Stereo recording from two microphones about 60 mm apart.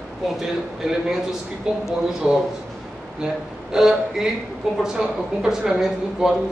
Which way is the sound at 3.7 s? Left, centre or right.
Centre.